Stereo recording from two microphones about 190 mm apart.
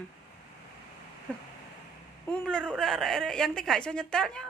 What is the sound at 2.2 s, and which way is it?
A woman's voice, 5° left (ahead or behind).